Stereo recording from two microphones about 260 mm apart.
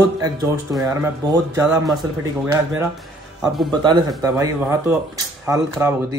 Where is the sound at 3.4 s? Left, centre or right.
Centre.